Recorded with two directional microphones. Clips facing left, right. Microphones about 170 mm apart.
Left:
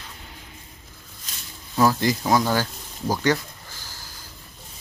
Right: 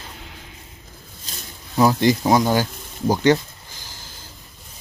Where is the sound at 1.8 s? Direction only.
20° right (ahead or behind).